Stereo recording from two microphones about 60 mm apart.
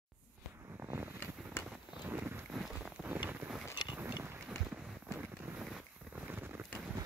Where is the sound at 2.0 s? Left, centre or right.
Right.